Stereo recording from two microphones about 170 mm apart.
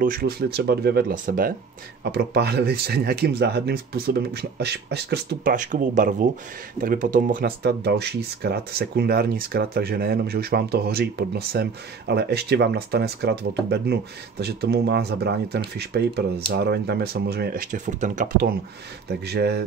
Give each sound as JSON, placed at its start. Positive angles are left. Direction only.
{"t": 0.0, "sound": "speech", "side_deg": -60}
{"t": 1.1, "sound": "speech", "side_deg": -55}
{"t": 2.1, "sound": "speech", "side_deg": -75}
{"t": 5.5, "sound": "speech", "side_deg": -50}
{"t": 19.0, "sound": "speech", "side_deg": -75}